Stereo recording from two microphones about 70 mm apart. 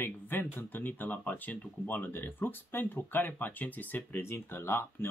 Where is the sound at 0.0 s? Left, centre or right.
Left.